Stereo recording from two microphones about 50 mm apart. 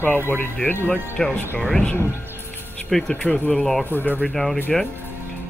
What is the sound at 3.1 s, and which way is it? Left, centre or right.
Speech, left.